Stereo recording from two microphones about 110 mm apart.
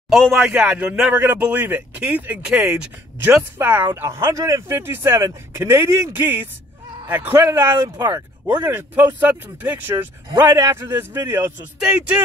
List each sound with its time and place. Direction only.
0.1 s a man's voice: centre (ahead or behind)